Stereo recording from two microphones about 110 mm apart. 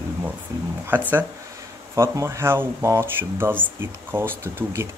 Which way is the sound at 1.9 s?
25° right (ahead or behind).